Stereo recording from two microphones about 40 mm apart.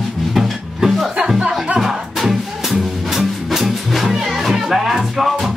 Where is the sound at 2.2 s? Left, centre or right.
Centre.